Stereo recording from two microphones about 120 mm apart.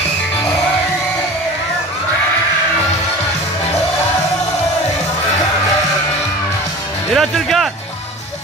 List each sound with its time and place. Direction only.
7.2 s music: centre (ahead or behind)